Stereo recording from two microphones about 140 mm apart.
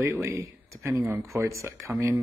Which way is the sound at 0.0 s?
20° right (ahead or behind).